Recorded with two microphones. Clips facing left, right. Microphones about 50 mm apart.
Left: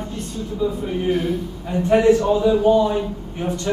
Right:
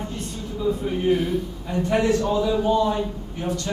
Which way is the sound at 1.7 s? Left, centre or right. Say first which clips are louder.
Left 6 dB; left.